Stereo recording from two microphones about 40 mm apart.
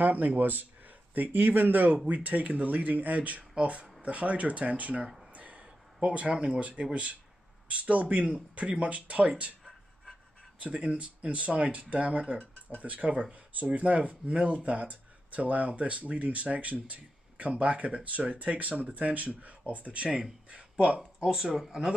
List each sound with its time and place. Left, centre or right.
0.0 s speech: right
2.0 s speech: right
10.6 s speech: right
21.2 s speech: centre